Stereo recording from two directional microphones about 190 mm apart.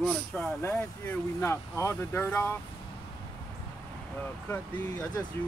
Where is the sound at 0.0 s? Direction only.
5° left (ahead or behind).